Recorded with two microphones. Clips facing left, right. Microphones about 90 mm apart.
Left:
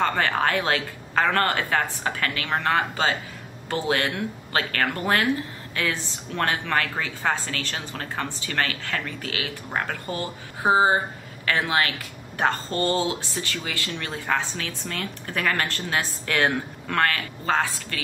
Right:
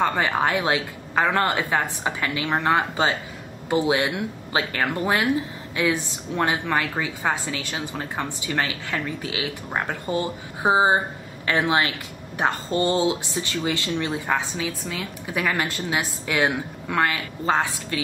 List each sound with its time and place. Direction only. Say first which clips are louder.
0.0 s speech: right 1 dB; 15° right (ahead or behind)